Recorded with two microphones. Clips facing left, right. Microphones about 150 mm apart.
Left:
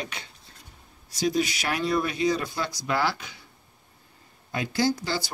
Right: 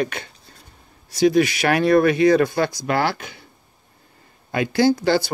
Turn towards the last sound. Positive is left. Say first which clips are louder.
# right 9 dB
turn(degrees=-65)  # may be behind; listen again after turning